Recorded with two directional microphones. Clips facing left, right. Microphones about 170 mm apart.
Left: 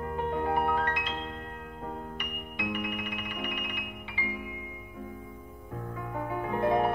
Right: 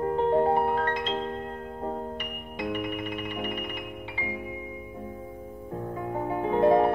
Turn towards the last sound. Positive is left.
turn(degrees=-30)  # may be behind; listen again after turning